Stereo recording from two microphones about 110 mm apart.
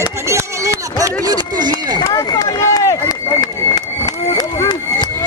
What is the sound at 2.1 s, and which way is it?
Run, 35° left (ahead or behind).